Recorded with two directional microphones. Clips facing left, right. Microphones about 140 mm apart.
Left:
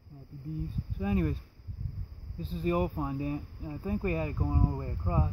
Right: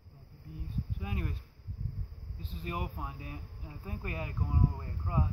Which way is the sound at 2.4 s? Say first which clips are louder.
Left 10 dB; 35° left (ahead or behind).